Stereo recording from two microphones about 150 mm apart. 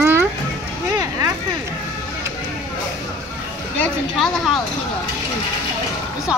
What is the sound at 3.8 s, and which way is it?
Speech, centre (ahead or behind).